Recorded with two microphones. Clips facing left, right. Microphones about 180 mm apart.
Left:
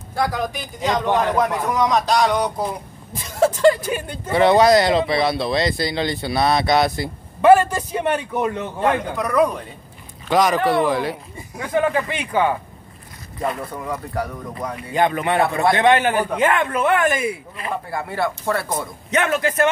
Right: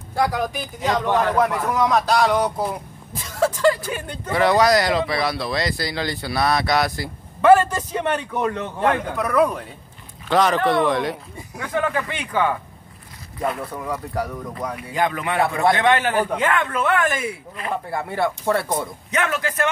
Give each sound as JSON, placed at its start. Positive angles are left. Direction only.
{"t": 0.1, "sound": "speech", "side_deg": -10}
{"t": 1.0, "sound": "speech", "side_deg": 15}
{"t": 1.7, "sound": "speech", "side_deg": -5}
{"t": 3.3, "sound": "speech", "side_deg": 20}
{"t": 7.5, "sound": "speech", "side_deg": 10}
{"t": 9.1, "sound": "speech", "side_deg": -5}
{"t": 10.3, "sound": "speech", "side_deg": 10}
{"t": 11.5, "sound": "speech", "side_deg": 15}
{"t": 13.4, "sound": "speech", "side_deg": 0}
{"t": 15.0, "sound": "speech", "side_deg": 25}
{"t": 18.1, "sound": "speech", "side_deg": -15}
{"t": 19.0, "sound": "speech", "side_deg": 25}